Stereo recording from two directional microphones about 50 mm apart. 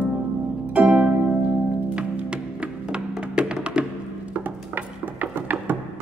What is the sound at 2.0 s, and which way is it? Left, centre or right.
Music, right.